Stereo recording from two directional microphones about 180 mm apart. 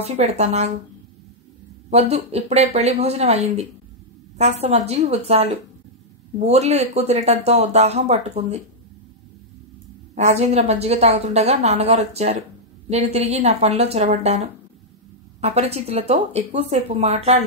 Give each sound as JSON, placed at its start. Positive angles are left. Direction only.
{"t": 0.0, "sound": "a woman's voice", "side_deg": -35}
{"t": 1.9, "sound": "a woman's voice", "side_deg": -35}
{"t": 10.1, "sound": "a woman's voice", "side_deg": -35}